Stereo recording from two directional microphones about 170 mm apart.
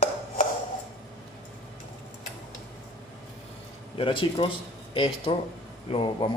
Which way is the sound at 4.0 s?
30° left (ahead or behind).